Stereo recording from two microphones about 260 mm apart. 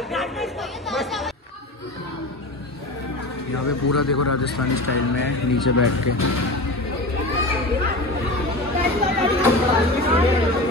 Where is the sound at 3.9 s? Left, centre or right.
Left.